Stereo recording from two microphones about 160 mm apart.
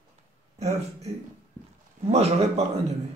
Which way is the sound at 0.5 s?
45° right (ahead or behind).